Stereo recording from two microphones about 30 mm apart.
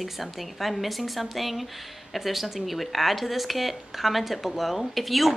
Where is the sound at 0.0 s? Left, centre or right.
Centre.